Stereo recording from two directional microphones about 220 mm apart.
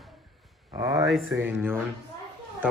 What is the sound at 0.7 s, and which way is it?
Speech, 15° right (ahead or behind).